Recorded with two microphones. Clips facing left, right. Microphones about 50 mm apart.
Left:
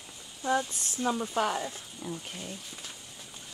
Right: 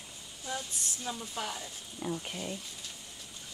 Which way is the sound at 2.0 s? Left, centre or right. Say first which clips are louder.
Right 3 dB; centre.